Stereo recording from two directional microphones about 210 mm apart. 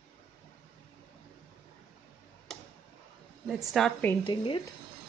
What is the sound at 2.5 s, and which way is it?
Tick-tock, centre (ahead or behind).